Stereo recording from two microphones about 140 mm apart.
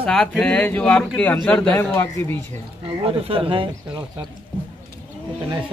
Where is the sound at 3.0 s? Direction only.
40° right (ahead or behind).